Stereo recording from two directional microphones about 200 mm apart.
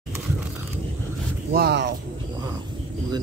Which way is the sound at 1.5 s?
55° right (ahead or behind).